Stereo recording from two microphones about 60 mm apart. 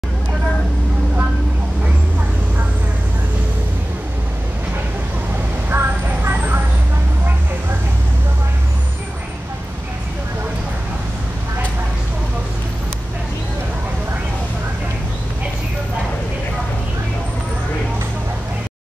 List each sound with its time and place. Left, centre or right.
5.7 s vehicle: right